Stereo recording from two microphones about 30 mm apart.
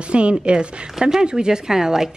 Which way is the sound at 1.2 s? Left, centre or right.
Right.